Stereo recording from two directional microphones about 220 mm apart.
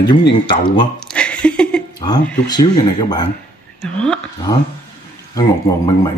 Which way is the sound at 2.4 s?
20° left (ahead or behind).